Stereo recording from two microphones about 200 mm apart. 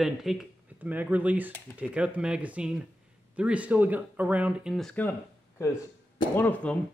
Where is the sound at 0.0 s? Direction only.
Centre (ahead or behind).